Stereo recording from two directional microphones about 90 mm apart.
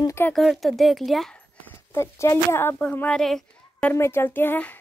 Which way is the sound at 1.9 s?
30° left (ahead or behind).